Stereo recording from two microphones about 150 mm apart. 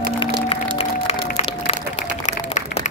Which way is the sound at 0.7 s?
40° left (ahead or behind).